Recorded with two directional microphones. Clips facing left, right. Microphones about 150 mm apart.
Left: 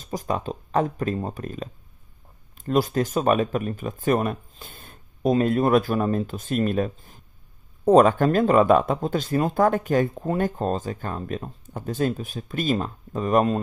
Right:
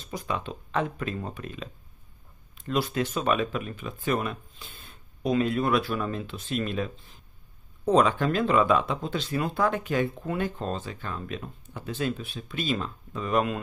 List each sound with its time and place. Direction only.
0.0 s speech: 40° left (ahead or behind)